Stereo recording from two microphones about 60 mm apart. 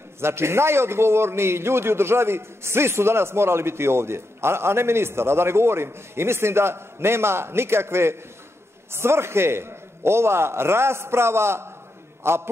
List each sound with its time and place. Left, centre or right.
0.2 s a man's voice: right